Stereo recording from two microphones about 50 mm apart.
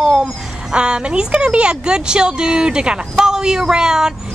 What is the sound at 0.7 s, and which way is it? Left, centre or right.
Speech, centre.